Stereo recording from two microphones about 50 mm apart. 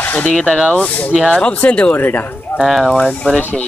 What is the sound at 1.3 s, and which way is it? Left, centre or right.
Speech, left.